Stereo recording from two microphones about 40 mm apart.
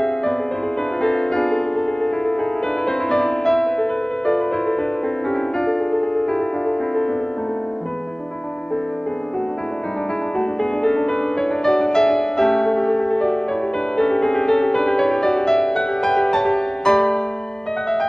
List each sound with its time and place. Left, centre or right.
1.0 s music: centre
10.6 s music: centre